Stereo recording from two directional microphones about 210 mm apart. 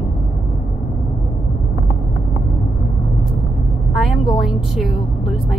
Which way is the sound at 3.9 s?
Centre (ahead or behind).